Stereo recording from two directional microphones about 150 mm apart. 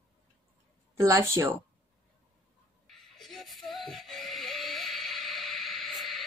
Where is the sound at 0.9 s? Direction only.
20° right (ahead or behind).